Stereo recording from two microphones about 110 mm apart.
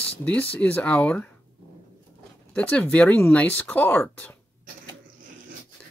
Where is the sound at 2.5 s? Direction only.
10° left (ahead or behind).